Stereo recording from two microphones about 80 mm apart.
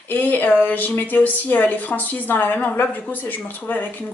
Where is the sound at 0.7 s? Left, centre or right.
Left.